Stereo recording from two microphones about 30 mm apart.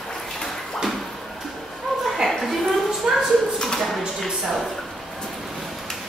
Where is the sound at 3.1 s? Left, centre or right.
Centre.